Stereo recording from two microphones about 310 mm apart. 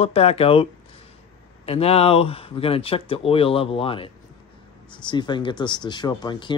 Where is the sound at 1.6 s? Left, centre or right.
Centre.